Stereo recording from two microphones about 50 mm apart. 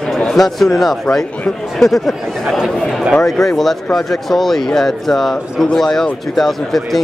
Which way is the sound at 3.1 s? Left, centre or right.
Centre.